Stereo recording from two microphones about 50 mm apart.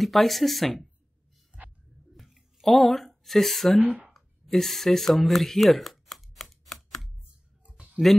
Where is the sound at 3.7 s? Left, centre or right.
Right.